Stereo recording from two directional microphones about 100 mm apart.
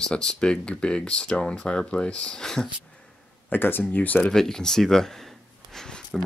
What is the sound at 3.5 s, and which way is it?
Speech, 20° left (ahead or behind).